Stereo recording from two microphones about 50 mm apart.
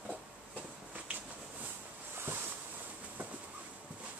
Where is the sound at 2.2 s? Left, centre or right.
Right.